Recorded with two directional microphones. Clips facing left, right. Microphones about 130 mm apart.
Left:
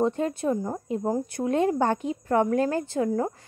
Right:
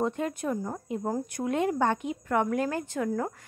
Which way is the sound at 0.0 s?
30° left (ahead or behind).